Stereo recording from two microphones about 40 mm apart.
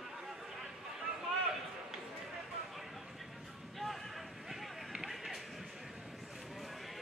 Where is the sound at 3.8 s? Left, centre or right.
Centre.